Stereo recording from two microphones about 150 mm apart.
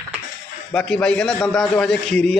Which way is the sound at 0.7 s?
5° left (ahead or behind).